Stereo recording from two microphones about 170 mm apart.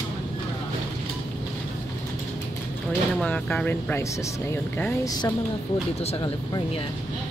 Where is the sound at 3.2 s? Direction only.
5° left (ahead or behind).